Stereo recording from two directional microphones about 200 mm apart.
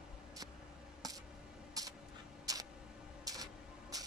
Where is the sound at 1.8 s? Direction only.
20° right (ahead or behind).